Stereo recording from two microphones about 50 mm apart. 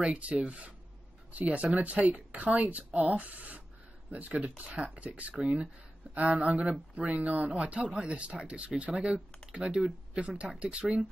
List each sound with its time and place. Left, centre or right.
0.0 s speech: right
5.4 s speech: centre